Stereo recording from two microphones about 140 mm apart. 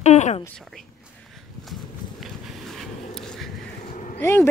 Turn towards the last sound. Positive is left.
turn(degrees=15)  # may be behind; listen again after turning